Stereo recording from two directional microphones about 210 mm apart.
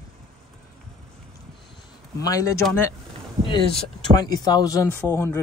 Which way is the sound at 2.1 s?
15° left (ahead or behind).